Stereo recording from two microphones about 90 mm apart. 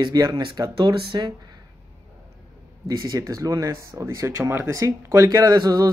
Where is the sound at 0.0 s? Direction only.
45° right (ahead or behind).